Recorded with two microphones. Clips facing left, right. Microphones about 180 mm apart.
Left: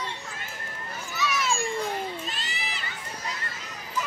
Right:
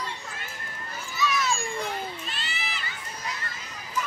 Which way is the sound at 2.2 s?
40° left (ahead or behind).